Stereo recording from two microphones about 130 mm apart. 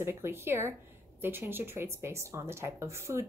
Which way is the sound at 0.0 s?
20° right (ahead or behind).